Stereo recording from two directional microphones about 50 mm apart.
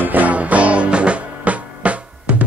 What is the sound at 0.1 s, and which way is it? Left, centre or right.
Music, right.